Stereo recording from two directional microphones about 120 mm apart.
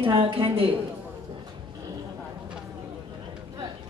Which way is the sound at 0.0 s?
50° right (ahead or behind).